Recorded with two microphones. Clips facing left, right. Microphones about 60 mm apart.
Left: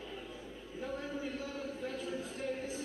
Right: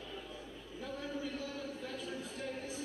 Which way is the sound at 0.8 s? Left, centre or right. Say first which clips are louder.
Left 1 dB; left.